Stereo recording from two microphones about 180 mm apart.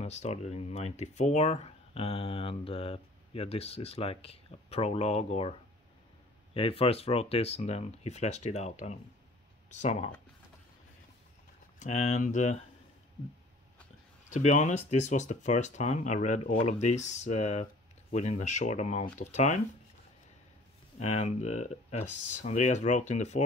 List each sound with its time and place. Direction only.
0.0 s speech: 40° left (ahead or behind)
11.8 s speech: 40° left (ahead or behind)
14.3 s speech: 40° left (ahead or behind)
21.0 s speech: 40° left (ahead or behind)